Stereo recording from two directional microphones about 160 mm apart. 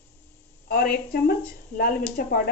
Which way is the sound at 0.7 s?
80° left.